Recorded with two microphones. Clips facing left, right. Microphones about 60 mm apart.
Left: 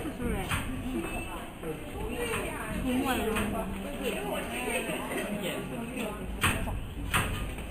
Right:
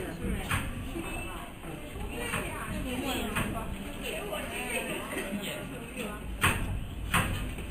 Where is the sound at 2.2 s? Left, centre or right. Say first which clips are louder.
Left 1 dB; centre.